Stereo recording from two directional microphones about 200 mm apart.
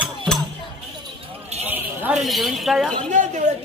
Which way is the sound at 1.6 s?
10° right (ahead or behind).